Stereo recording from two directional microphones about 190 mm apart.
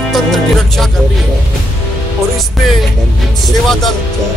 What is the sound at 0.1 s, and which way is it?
Music, centre (ahead or behind).